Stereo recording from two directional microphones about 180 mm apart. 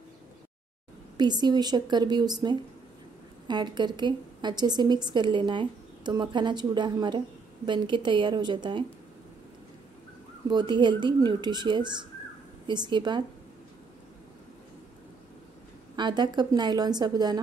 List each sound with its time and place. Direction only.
1.1 s a woman's voice: 25° right (ahead or behind)
10.5 s a woman's voice: 25° right (ahead or behind)
16.0 s a woman's voice: 25° right (ahead or behind)